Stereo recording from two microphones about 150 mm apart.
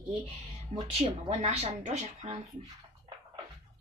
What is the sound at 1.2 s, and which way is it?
Speech, 45° right (ahead or behind).